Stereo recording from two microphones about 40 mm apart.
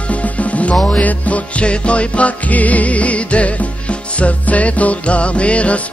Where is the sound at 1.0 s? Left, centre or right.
Left.